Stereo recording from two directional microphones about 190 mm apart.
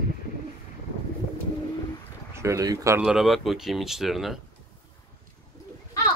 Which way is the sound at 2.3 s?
15° right (ahead or behind).